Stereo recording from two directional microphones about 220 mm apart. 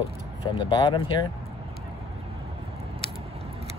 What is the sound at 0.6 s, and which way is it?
Speech, 20° left (ahead or behind).